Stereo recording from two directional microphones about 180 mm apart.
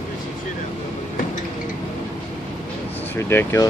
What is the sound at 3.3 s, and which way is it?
Speech, 15° left (ahead or behind).